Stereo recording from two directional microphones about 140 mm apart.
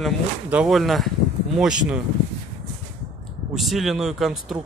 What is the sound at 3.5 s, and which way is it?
Speech, centre (ahead or behind).